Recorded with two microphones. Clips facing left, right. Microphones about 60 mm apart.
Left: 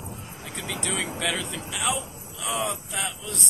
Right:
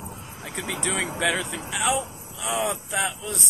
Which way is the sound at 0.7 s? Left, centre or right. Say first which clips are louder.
Right 3 dB; centre.